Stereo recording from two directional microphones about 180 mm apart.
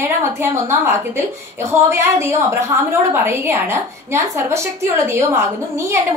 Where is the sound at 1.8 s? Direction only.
15° right (ahead or behind).